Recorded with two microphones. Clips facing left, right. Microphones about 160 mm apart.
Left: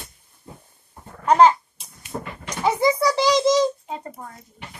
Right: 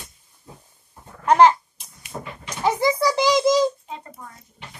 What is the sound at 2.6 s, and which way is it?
A child's voice, 5° right (ahead or behind).